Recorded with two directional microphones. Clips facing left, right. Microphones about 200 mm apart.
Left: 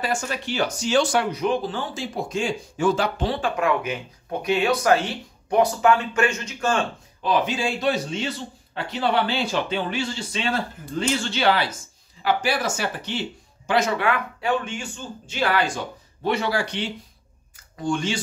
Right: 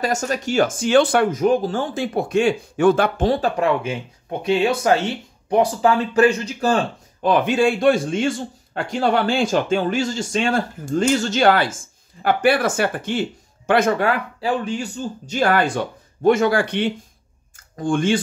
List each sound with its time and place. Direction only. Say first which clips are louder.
0.0 s speech: right 5 dB; 40° right (ahead or behind)
7.2 s speech: right 6 dB; 55° right (ahead or behind)
14.0 s speech: right 3 dB; 35° right (ahead or behind); by 18.2 s 55° right (ahead or behind)